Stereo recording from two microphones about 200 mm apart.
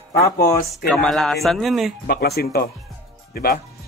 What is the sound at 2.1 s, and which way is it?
Speech, 50° left (ahead or behind).